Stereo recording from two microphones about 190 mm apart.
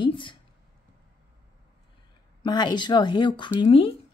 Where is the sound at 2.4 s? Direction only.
20° left (ahead or behind).